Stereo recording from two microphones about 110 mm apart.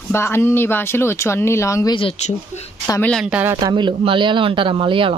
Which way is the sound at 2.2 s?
85° left.